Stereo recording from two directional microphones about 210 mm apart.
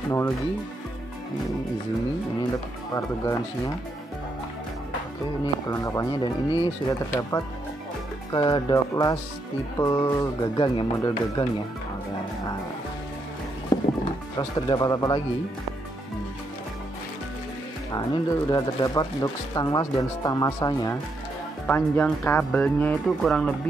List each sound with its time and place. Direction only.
2.9 s speech: 15° left (ahead or behind)
5.4 s speech: 15° left (ahead or behind)
13.7 s music: 20° left (ahead or behind)
14.7 s speech: 20° left (ahead or behind)
17.9 s speech: 20° left (ahead or behind); by 23.5 s 5° left (ahead or behind)